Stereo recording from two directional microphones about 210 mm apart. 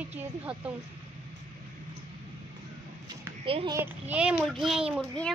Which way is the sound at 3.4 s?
25° right (ahead or behind).